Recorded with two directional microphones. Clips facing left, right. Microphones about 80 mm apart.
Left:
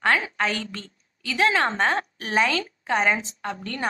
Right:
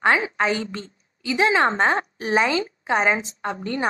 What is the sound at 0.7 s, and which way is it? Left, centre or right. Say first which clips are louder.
A woman's voice: right 4 dB; right.